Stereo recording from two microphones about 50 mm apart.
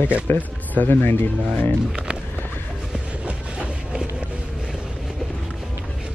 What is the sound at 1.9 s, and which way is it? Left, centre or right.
Speech, centre.